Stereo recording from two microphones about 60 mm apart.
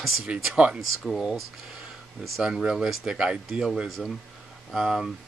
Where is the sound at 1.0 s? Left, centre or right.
Centre.